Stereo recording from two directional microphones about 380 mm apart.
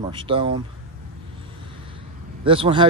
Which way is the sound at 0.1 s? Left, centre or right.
Centre.